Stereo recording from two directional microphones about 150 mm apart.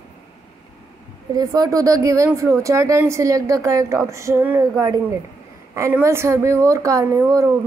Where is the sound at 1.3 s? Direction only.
25° right (ahead or behind).